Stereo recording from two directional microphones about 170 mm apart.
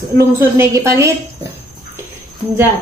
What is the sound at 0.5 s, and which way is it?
Speech, 15° right (ahead or behind).